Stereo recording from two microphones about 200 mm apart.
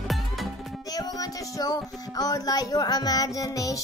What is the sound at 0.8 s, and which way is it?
Child singing, 20° left (ahead or behind).